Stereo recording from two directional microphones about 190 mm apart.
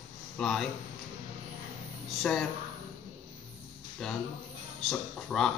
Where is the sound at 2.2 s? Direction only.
Centre (ahead or behind).